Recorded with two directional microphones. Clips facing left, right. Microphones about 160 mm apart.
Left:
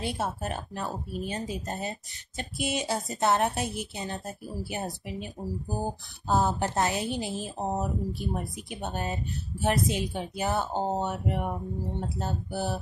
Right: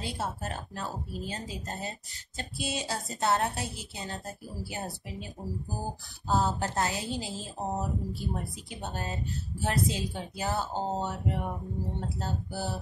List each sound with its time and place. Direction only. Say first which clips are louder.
0.0 s speech: left 4 dB; 20° left (ahead or behind)